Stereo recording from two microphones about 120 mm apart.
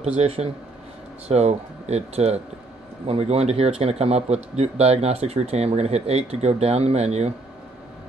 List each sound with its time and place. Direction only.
0.0 s speech: 60° right (ahead or behind)